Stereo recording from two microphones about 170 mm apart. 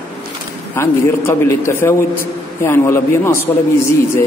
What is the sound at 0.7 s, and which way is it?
A man's voice, 15° left (ahead or behind).